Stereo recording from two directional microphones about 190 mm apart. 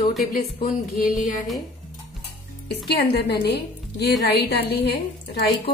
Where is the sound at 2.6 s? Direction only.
60° left (ahead or behind).